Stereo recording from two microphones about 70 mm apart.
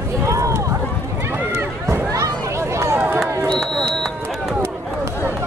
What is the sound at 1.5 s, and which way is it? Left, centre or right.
Run, right.